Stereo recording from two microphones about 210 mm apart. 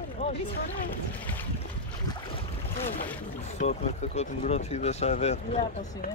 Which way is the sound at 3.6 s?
30° left (ahead or behind).